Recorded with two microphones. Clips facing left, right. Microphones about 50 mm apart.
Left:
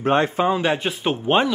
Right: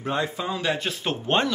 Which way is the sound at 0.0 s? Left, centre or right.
Left.